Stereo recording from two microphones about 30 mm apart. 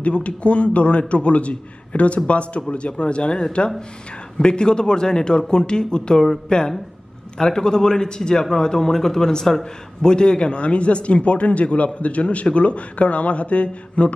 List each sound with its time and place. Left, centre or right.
0.0 s a man's voice: left
7.3 s a man's voice: left
9.6 s speech: left